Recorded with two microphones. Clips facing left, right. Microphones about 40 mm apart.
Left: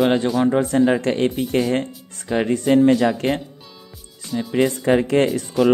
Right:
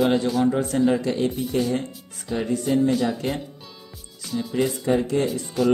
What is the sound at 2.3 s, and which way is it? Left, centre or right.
Speech, left.